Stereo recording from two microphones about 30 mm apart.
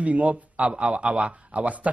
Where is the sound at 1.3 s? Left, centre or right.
Right.